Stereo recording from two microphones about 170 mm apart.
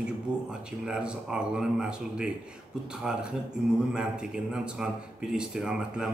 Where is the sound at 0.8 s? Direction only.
5° right (ahead or behind).